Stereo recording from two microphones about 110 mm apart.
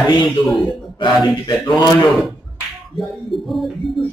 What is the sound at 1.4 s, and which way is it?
Speech, 40° left (ahead or behind).